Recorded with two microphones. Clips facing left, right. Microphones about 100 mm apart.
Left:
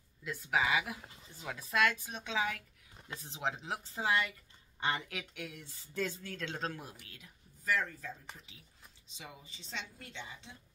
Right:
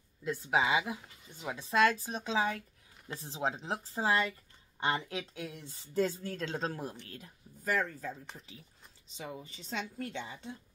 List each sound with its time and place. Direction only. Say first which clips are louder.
0.2 s speech: right 3 dB; 25° right (ahead or behind); by 8.1 s 45° right (ahead or behind)
9.1 s a woman's voice: right 8 dB; 40° right (ahead or behind)